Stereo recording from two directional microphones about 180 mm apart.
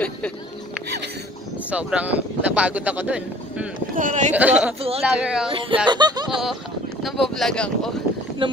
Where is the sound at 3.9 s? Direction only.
45° right (ahead or behind).